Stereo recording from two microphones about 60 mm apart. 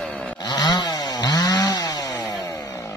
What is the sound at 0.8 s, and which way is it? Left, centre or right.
Chainsaw, left.